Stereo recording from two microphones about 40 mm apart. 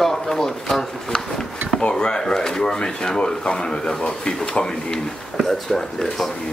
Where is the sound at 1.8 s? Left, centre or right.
Left.